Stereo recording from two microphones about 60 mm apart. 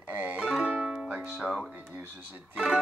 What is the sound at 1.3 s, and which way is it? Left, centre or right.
Speech, centre.